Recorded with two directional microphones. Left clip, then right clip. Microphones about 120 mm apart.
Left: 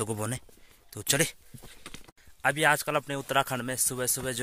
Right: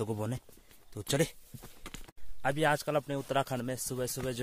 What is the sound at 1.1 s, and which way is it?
Speech, 15° right (ahead or behind).